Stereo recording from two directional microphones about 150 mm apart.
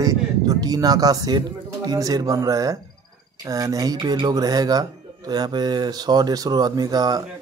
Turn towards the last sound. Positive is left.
turn(degrees=-25)  # may be behind; listen again after turning